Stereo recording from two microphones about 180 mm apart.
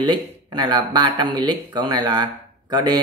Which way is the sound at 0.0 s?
25° right (ahead or behind).